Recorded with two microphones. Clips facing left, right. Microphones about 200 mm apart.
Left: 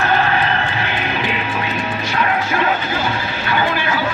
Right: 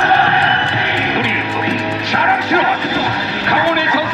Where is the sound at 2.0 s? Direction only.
70° right (ahead or behind).